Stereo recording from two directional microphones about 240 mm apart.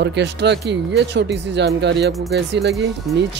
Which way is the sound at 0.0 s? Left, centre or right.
Right.